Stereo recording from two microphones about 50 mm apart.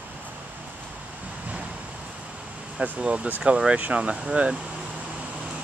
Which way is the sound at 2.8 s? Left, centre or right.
Right.